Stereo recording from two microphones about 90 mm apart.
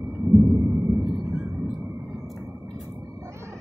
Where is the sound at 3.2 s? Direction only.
30° right (ahead or behind).